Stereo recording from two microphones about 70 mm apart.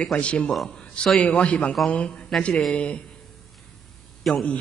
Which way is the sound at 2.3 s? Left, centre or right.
Centre.